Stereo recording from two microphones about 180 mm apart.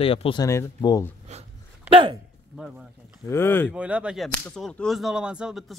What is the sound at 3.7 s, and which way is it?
Speech, 5° right (ahead or behind).